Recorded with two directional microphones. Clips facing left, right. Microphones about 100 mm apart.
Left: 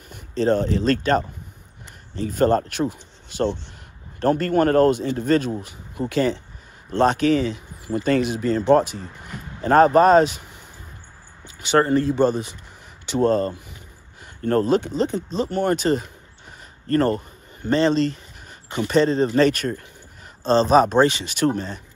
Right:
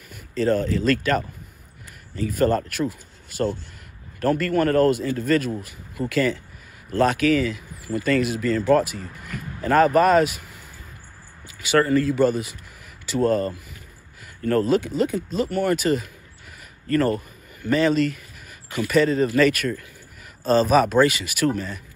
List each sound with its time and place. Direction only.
0.1 s speech: 30° left (ahead or behind)
4.2 s speech: 30° left (ahead or behind)
11.7 s a man's voice: 30° left (ahead or behind)